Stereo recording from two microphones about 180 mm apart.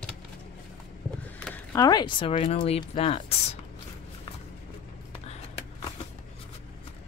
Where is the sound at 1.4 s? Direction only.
10° left (ahead or behind); by 3.3 s 35° left (ahead or behind).